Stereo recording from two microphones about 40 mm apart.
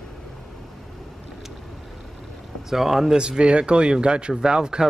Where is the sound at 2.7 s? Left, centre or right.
Centre.